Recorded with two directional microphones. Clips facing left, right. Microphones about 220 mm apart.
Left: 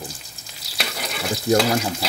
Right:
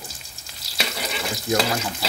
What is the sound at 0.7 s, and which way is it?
Frying, centre (ahead or behind).